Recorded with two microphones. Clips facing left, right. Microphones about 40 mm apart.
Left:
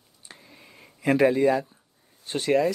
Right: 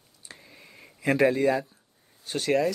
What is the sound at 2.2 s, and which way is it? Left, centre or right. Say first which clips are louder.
Speech: left 2 dB; centre.